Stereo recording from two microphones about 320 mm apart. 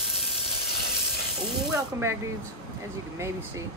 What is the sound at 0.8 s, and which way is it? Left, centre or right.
Hiss, left.